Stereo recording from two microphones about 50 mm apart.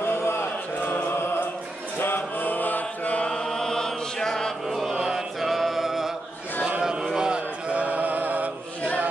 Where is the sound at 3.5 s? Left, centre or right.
Centre.